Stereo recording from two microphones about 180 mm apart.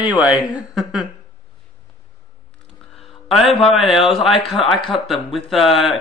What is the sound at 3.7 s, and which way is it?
Speech, centre (ahead or behind).